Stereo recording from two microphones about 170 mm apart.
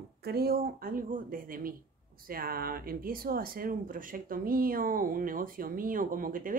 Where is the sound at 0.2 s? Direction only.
65° right (ahead or behind).